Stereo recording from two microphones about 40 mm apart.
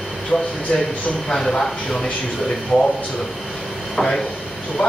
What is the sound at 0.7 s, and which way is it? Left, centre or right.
Speech, left.